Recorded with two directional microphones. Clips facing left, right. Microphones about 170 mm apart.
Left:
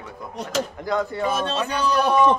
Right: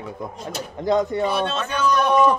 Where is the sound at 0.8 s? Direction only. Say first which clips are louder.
Right 4 dB; 20° right (ahead or behind).